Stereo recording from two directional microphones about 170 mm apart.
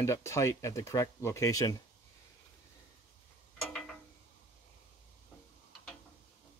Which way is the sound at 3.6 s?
Centre (ahead or behind).